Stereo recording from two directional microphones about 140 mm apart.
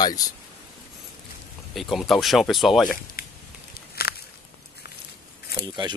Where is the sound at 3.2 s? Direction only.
90° left.